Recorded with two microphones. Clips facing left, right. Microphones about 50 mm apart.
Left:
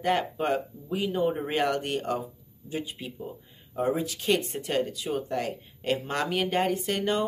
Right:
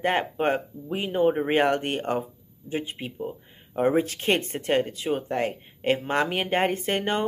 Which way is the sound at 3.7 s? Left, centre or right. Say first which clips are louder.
Right 5 dB; right.